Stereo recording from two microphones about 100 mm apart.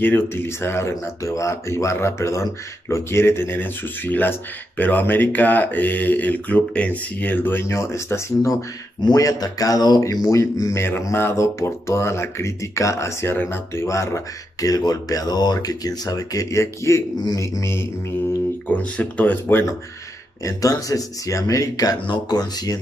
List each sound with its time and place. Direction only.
0.0 s speech: 20° left (ahead or behind)
9.0 s speech: 40° left (ahead or behind)
18.7 s speech: 15° left (ahead or behind)
20.4 s speech: 35° left (ahead or behind)
22.0 s speech: 45° left (ahead or behind)